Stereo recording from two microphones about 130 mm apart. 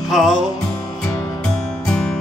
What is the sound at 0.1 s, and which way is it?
Speech, 5° right (ahead or behind).